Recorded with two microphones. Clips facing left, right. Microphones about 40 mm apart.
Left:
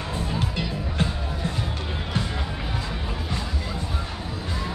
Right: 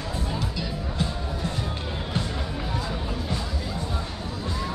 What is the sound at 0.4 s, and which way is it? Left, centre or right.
Music, left.